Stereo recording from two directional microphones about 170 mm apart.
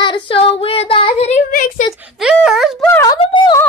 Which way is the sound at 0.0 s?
30° left (ahead or behind).